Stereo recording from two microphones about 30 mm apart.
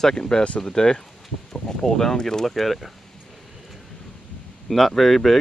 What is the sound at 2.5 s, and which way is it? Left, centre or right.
Speech, centre.